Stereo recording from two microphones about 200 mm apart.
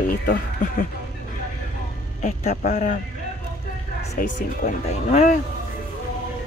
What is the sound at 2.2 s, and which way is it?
Speech, 35° left (ahead or behind).